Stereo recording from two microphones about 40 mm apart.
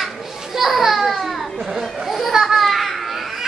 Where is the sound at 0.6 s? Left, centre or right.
Centre.